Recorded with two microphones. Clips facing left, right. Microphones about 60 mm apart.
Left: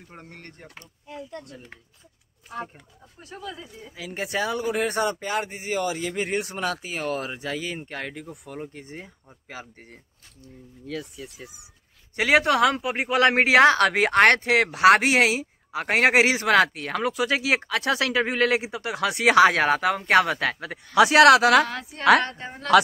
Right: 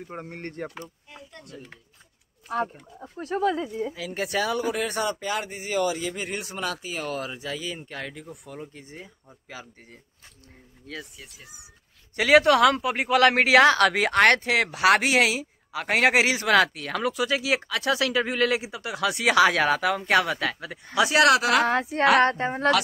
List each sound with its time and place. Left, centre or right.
0.1 s speech: centre
0.6 s speech: right
2.5 s speech: right
3.2 s speech: right
3.9 s speech: centre; by 9.9 s left
12.2 s speech: left
17.1 s speech: left
20.9 s speech: left
21.6 s a woman's voice: right